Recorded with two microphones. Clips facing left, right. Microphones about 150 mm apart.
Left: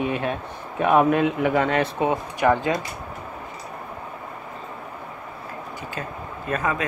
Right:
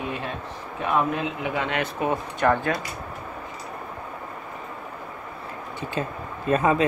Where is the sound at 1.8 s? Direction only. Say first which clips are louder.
Left 3 dB; 25° left (ahead or behind).